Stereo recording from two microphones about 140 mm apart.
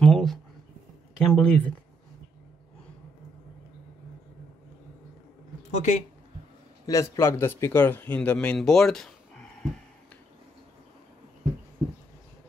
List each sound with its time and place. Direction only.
0.0 s a sound: 5° left (ahead or behind)
1.2 s speech: 5° left (ahead or behind)
5.8 s speech: 55° left (ahead or behind)
6.9 s speech: 20° left (ahead or behind); by 9.7 s 5° left (ahead or behind)